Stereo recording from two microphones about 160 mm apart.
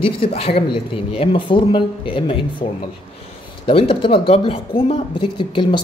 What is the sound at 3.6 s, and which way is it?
Speech, 35° left (ahead or behind).